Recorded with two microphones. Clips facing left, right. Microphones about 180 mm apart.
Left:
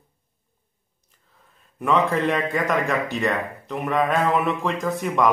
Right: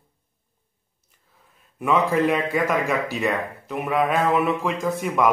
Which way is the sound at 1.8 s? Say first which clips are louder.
Right 1 dB; centre (ahead or behind).